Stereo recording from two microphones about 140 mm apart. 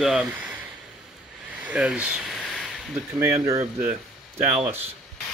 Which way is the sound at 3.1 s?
20° right (ahead or behind).